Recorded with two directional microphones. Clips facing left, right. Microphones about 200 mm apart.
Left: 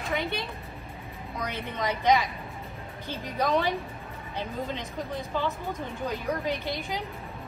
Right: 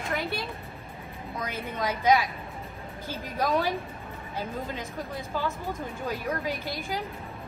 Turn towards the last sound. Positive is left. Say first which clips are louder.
# left 1 dB
turn(degrees=-5)  # may be behind; listen again after turning